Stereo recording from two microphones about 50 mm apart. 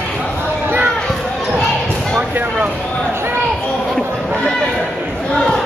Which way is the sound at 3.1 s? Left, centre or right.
Right.